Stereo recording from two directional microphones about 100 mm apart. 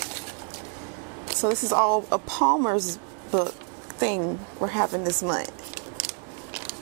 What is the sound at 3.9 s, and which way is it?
Speech, 15° right (ahead or behind).